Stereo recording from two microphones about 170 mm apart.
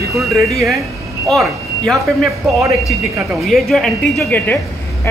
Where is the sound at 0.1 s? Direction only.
Centre (ahead or behind).